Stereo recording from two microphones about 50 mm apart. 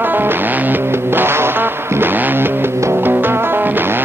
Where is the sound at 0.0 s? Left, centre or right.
Right.